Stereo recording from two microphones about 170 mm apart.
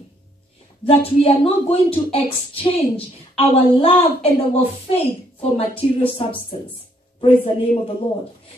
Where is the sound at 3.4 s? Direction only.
35° left (ahead or behind).